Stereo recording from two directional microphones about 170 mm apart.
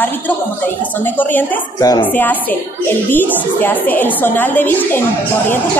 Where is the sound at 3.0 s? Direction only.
10° left (ahead or behind).